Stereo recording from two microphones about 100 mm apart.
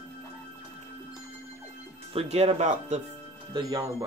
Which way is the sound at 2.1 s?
80° right.